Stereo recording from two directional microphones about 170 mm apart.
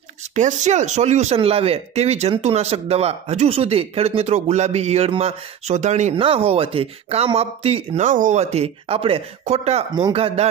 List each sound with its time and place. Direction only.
0.3 s speech: 45° right (ahead or behind)